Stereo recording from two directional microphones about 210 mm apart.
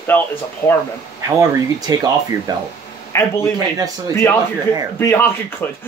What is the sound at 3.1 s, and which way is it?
Speech, 15° left (ahead or behind).